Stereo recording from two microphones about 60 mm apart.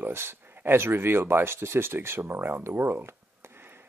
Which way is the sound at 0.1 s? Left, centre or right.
Right.